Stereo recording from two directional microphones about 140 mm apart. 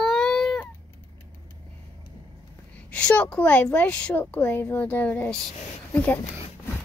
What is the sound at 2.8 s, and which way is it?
A woman's voice, 10° left (ahead or behind).